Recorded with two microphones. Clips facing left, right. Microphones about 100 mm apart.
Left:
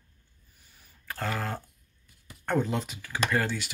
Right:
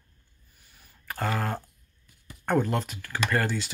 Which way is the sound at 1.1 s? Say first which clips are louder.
Right 3 dB; 5° right (ahead or behind).